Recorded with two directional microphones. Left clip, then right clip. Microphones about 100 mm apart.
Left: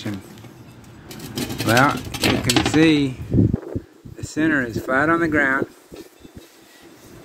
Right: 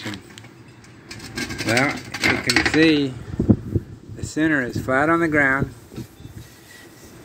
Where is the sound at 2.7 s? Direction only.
20° left (ahead or behind).